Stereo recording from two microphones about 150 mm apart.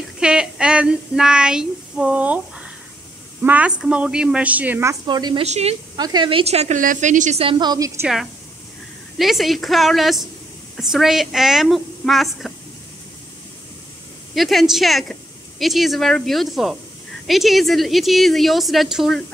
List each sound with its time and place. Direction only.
0.2 s child singing: 5° right (ahead or behind)
3.4 s a woman's voice: 10° right (ahead or behind)
5.0 s a woman's voice: 30° right (ahead or behind)
5.4 s speech: 45° right (ahead or behind)
5.9 s speech: 30° right (ahead or behind); by 6.8 s 45° right (ahead or behind)
6.8 s a woman's voice: 60° right (ahead or behind)
7.4 s a woman's voice: 30° right (ahead or behind)
9.2 s a woman's voice: centre (ahead or behind)
14.3 s a woman's voice: centre (ahead or behind)